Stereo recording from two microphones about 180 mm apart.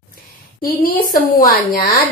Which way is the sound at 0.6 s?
55° left (ahead or behind).